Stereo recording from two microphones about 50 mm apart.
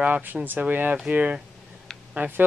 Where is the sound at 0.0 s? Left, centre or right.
Right.